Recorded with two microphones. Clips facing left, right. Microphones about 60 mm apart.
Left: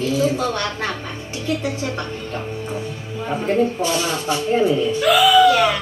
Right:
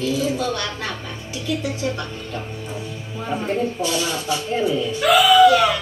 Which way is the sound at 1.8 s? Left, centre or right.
Left.